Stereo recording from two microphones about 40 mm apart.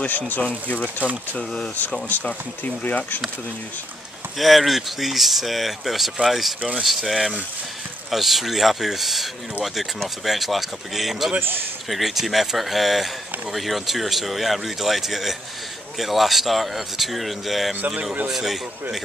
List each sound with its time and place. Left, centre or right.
0.4 s speech: left
2.0 s speech: left
4.4 s speech: centre
11.3 s a man's voice: right
11.9 s a man's voice: centre